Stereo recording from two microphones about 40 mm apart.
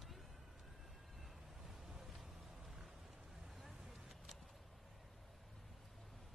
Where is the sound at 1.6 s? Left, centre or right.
Centre.